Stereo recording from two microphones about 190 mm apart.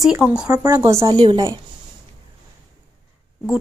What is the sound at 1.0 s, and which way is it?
Speech, 25° right (ahead or behind).